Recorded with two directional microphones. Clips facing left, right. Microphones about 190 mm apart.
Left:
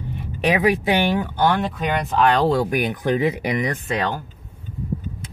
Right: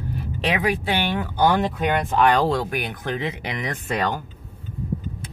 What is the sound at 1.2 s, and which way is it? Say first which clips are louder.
Speech: even; 15° right (ahead or behind).